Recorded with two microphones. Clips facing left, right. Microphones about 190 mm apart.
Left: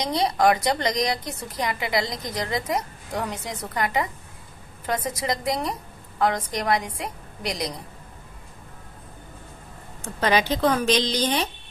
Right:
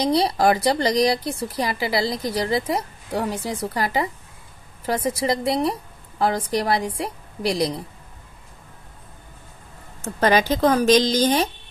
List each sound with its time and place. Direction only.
0.0 s a woman's voice: 35° right (ahead or behind)
10.2 s a woman's voice: 45° right (ahead or behind)